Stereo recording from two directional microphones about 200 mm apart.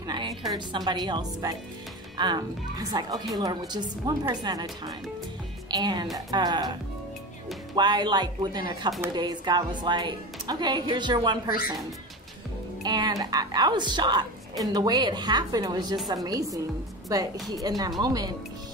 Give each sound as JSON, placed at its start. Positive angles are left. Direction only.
{"t": 0.0, "sound": "music", "side_deg": -20}
{"t": 0.5, "sound": "a woman's voice", "side_deg": -20}
{"t": 12.8, "sound": "a woman's voice", "side_deg": -20}